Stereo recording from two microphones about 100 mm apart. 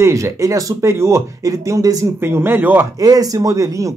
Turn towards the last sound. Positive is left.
turn(degrees=-35)  # may be behind; listen again after turning